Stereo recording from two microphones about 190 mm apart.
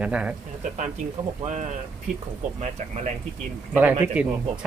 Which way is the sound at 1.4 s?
40° right (ahead or behind).